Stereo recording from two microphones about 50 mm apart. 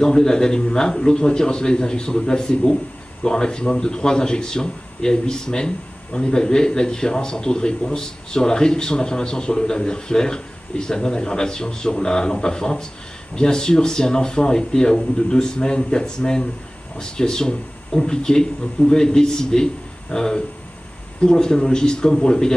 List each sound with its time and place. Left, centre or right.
0.0 s a man's voice: centre